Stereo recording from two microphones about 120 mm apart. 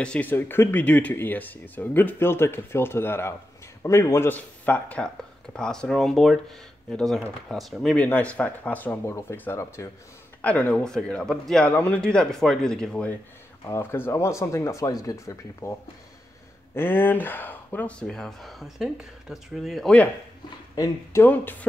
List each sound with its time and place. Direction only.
0.0 s speech: 10° left (ahead or behind)
13.7 s speech: 20° left (ahead or behind)
20.7 s speech: 30° left (ahead or behind)
21.2 s speech: 15° left (ahead or behind)